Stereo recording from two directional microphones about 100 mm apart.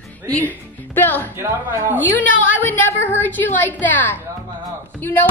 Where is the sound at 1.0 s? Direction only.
20° left (ahead or behind).